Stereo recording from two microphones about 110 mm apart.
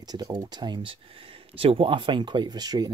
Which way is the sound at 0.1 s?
40° right (ahead or behind).